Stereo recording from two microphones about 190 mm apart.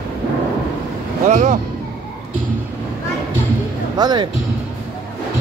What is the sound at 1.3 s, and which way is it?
Speech, 40° right (ahead or behind).